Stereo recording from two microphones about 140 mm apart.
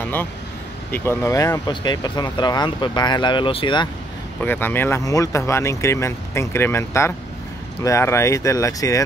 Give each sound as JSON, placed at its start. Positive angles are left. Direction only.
{"t": 0.0, "sound": "a sound", "side_deg": 15}
{"t": 0.9, "sound": "speech", "side_deg": 20}
{"t": 4.4, "sound": "speech", "side_deg": 15}